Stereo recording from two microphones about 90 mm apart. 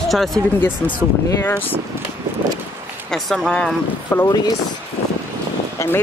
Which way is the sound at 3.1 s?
5° left (ahead or behind).